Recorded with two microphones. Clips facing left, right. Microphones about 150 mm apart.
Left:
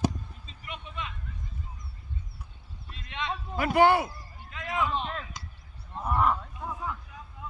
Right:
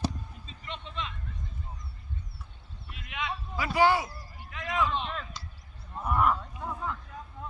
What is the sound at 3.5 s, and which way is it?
Speech, 55° left (ahead or behind).